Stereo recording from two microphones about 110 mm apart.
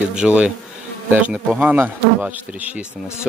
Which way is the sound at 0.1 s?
10° right (ahead or behind).